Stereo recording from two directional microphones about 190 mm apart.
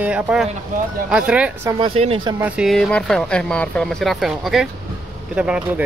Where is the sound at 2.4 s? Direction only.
5° right (ahead or behind).